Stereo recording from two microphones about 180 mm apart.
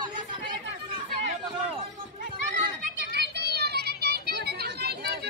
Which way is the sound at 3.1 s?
65° right (ahead or behind).